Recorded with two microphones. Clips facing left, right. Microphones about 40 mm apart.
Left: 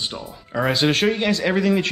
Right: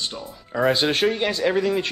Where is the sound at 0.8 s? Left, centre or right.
Left.